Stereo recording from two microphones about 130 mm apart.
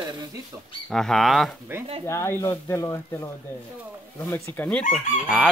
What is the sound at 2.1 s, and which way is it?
Speech, 20° left (ahead or behind).